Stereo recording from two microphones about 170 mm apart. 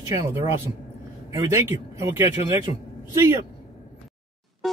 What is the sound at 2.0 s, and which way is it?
Speech, 15° right (ahead or behind).